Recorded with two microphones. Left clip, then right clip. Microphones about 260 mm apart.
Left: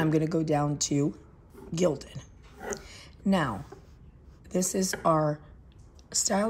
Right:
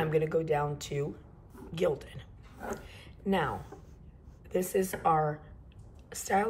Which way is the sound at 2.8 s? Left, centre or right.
Left.